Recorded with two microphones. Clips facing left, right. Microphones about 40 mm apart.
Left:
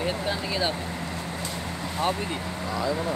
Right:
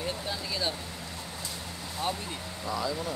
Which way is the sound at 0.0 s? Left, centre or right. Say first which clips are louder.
Left 6 dB; left.